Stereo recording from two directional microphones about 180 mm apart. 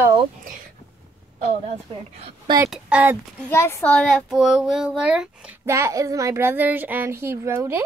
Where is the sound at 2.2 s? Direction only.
35° right (ahead or behind).